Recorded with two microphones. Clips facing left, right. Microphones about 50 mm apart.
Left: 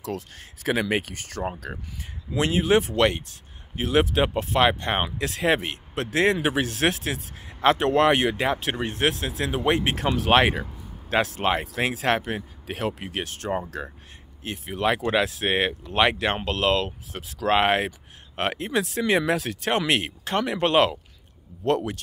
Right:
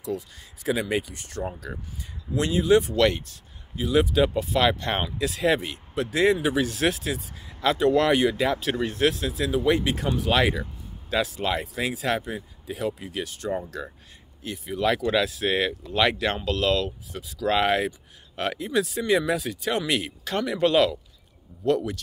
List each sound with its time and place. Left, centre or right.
0.0 s speech: left
2.9 s speech: left
3.7 s speech: left
4.6 s speech: left
5.0 s speech: left
9.1 s speech: left
10.3 s speech: left
13.5 s speech: left